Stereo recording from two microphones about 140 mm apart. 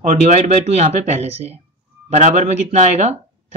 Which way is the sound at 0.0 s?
60° right (ahead or behind).